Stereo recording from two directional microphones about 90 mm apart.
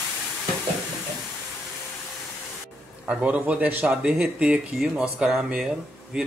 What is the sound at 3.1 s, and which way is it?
Speech, 15° right (ahead or behind).